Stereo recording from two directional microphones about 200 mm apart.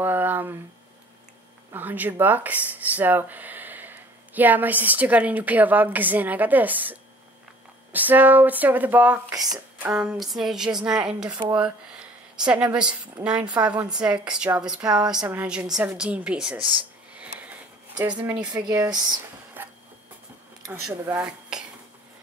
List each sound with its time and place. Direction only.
0.0 s speech: 10° right (ahead or behind)
1.7 s a woman's voice: 10° right (ahead or behind)
12.4 s a woman's voice: 5° right (ahead or behind)
16.7 s a sound: 5° right (ahead or behind)
18.2 s speech: 5° right (ahead or behind)
18.5 s speech: 20° right (ahead or behind)
19.6 s a sound: 10° right (ahead or behind)
20.8 s speech: 10° right (ahead or behind)